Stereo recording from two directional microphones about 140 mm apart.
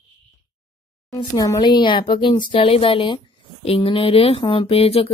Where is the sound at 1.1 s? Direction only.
25° left (ahead or behind).